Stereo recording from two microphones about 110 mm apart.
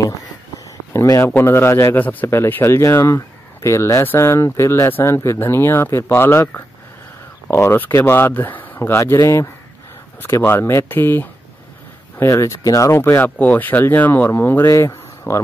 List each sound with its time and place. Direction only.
0.9 s a man's voice: 25° left (ahead or behind)